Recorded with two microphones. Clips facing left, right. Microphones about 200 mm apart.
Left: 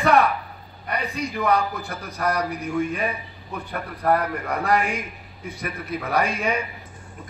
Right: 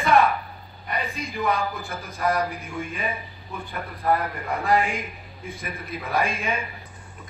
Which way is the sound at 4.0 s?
70° left (ahead or behind).